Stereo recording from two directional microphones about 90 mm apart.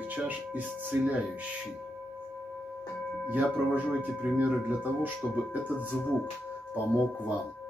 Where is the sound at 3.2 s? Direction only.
20° right (ahead or behind).